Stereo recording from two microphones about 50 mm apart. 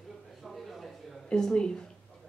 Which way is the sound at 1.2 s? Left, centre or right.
Centre.